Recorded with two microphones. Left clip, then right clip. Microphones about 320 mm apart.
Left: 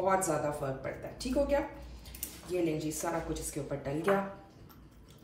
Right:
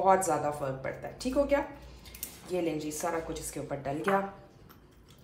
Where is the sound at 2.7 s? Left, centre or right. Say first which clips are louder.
Right 2 dB; centre.